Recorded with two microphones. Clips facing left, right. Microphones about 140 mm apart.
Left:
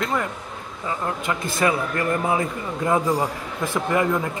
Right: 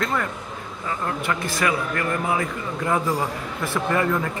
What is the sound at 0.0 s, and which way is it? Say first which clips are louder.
A man's voice: even; 15° left (ahead or behind).